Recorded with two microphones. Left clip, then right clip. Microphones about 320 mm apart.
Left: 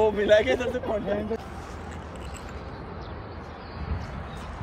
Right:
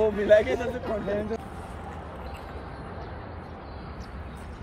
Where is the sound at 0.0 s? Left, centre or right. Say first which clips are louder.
Even; left.